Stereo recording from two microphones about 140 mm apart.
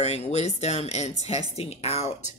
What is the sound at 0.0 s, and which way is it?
Speech, 50° left (ahead or behind).